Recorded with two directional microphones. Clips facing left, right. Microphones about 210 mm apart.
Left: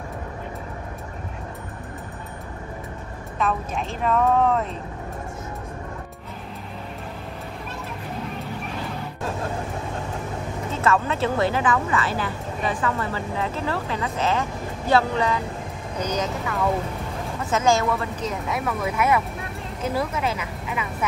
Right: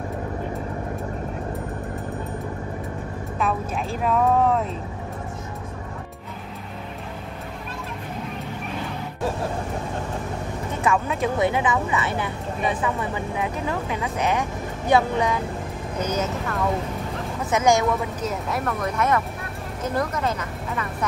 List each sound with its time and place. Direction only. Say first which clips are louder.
3.3 s a woman's voice: even; 5° right (ahead or behind)
10.7 s a woman's voice: left 1 dB; 15° right (ahead or behind)
18.5 s a woman's voice: left 1 dB; centre (ahead or behind)